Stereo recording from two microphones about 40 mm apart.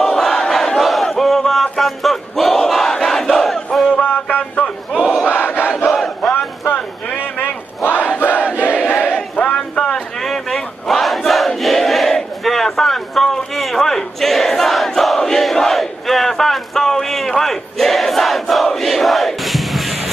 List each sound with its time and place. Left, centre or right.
0.0 s battle cry: centre
4.0 s music: left
5.3 s crowd: left
5.9 s battle cry: centre
7.2 s a sound: left
7.8 s battle cry: left
8.5 s crowd: left
9.1 s a sound: left
10.2 s battle cry: centre